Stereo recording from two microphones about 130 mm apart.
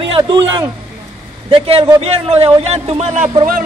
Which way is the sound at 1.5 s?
45° right (ahead or behind).